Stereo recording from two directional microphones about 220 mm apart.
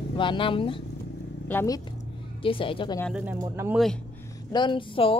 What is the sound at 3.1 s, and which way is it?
Speech, 5° right (ahead or behind).